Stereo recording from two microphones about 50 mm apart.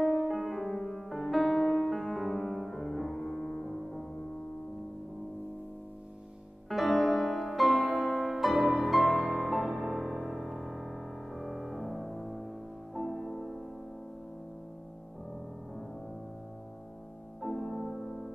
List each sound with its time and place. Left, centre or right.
0.2 s music: centre
6.7 s music: centre
17.4 s music: centre